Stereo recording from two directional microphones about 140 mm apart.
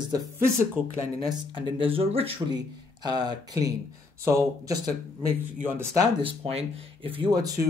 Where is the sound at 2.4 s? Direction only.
30° right (ahead or behind).